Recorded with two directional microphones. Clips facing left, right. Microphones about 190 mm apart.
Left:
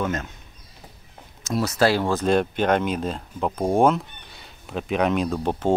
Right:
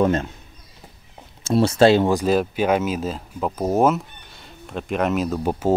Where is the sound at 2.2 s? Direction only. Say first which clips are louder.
Right 1 dB; 5° right (ahead or behind).